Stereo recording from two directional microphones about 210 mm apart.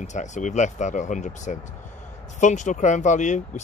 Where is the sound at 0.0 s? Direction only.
35° left (ahead or behind).